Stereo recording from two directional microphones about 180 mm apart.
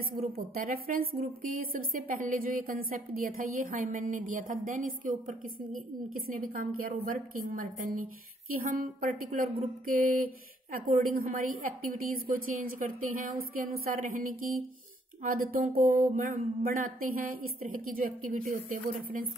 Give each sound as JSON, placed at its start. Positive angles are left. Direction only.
{"t": 0.2, "sound": "a woman's voice", "side_deg": -50}